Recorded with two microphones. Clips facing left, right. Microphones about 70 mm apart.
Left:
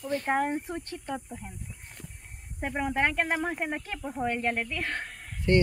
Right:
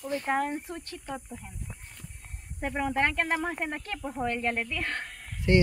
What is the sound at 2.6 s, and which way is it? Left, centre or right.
Speech, centre.